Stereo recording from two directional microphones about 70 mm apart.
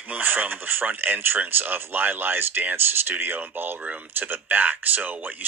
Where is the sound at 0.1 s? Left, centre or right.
Right.